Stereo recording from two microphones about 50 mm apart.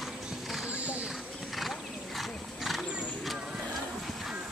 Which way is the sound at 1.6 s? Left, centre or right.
Centre.